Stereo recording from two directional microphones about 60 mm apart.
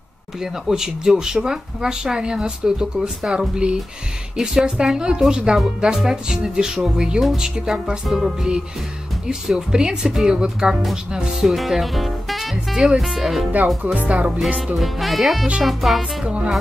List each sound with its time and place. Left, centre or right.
0.4 s speech: centre
13.8 s speech: right
14.8 s music: centre